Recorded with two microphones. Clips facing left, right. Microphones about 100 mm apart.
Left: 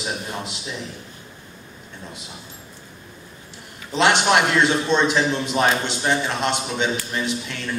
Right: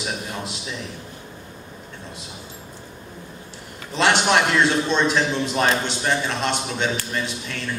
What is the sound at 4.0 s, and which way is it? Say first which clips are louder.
A man's voice: left 1 dB; 10° left (ahead or behind).